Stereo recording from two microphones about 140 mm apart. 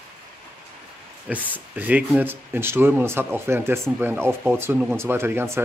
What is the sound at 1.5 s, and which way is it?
Speech, 10° right (ahead or behind).